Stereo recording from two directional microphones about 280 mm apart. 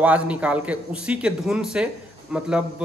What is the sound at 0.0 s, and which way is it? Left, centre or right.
A woman's voice, centre.